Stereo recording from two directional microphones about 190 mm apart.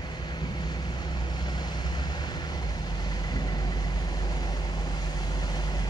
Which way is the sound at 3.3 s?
20° left (ahead or behind).